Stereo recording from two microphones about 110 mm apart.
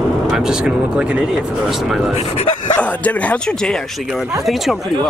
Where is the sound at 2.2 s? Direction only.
80° left.